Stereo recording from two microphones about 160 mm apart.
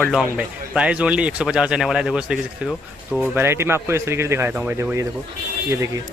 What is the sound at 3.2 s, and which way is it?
A man's voice, 15° right (ahead or behind).